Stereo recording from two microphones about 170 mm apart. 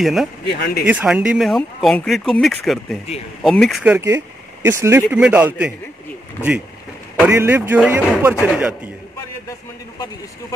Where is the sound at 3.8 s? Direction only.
15° right (ahead or behind).